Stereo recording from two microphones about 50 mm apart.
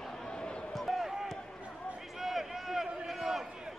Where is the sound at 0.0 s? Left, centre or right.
Centre.